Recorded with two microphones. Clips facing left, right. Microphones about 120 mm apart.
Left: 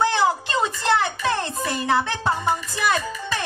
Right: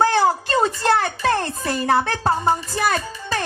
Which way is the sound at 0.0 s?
40° right (ahead or behind).